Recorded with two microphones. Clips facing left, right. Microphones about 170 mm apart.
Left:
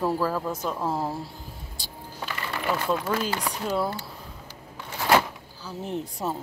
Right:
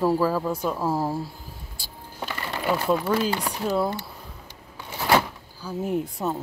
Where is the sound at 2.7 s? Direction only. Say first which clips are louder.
Right 4 dB; 5° right (ahead or behind).